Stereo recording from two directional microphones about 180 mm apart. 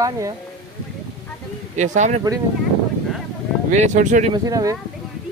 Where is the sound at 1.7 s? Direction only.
40° right (ahead or behind).